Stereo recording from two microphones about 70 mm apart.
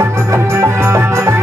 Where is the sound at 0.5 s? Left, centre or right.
Right.